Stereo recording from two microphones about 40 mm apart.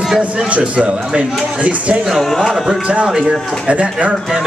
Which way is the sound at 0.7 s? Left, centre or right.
Right.